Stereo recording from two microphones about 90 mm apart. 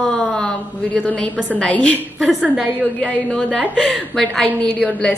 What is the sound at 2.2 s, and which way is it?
Speech, 5° right (ahead or behind).